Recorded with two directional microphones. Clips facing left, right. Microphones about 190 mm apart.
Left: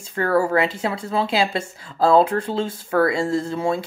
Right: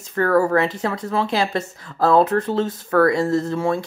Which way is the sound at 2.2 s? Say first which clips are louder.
Right 2 dB; 30° left (ahead or behind).